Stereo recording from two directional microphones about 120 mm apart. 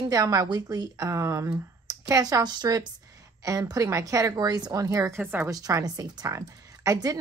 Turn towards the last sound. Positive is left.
turn(degrees=-30)  # may be behind; listen again after turning